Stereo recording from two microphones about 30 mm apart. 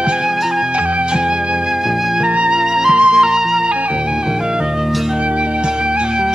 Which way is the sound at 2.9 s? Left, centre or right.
Right.